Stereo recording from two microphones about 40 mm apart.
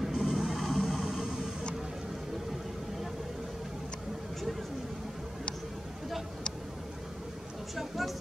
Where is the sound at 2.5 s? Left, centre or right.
Centre.